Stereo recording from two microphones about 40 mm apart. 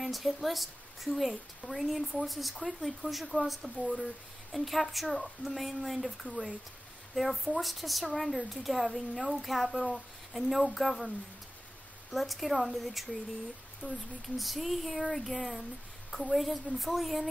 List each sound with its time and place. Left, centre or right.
0.0 s speech: centre
3.3 s speech: left
3.9 s speech: centre
12.1 s speech: centre